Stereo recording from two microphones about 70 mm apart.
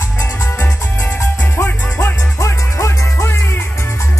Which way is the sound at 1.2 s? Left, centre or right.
Left.